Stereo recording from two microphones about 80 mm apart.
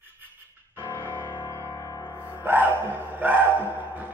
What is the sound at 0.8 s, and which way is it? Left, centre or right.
Music, left.